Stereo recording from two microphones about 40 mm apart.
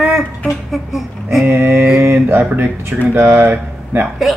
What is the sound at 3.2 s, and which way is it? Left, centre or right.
Speech, right.